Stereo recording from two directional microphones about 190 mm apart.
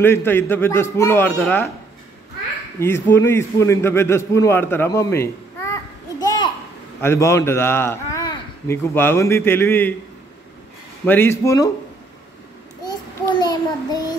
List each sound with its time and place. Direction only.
0.0 s a man's voice: 10° left (ahead or behind)
2.8 s a man's voice: 15° left (ahead or behind)
6.2 s a sound: 20° left (ahead or behind)
7.0 s a man's voice: 15° left (ahead or behind)
11.1 s a man's voice: 10° left (ahead or behind)
12.8 s child singing: 20° left (ahead or behind)